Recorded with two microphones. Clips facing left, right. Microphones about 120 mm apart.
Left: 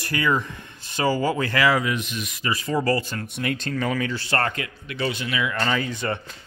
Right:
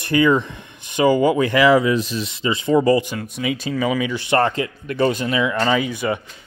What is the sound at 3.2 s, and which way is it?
Speech, centre (ahead or behind).